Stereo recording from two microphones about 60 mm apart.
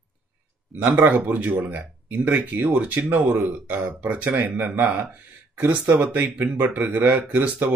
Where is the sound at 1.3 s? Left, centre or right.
Right.